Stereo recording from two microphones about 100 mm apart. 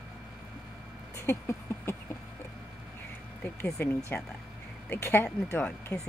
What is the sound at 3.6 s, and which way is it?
Speech, 30° left (ahead or behind).